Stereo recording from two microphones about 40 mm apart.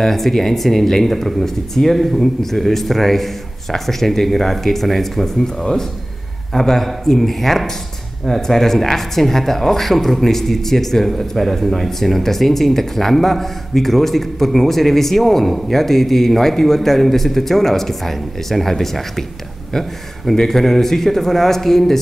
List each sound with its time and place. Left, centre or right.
0.0 s speech: centre